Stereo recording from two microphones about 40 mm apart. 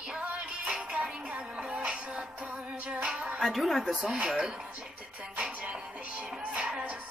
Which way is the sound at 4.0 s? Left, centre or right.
Right.